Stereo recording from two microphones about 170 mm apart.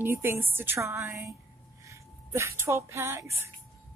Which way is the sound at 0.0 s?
15° right (ahead or behind).